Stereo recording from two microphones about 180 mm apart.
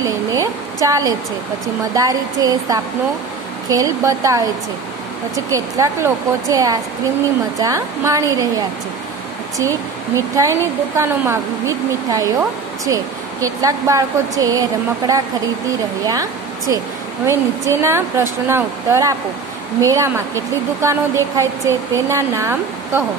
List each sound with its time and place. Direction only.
0.0 s a sound: 20° right (ahead or behind)
2.0 s a woman's voice: 20° right (ahead or behind)
9.6 s speech: 15° right (ahead or behind)
16.1 s speech: 20° right (ahead or behind)